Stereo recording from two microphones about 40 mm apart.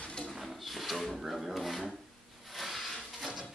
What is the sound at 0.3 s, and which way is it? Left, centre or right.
Drawer open or close, centre.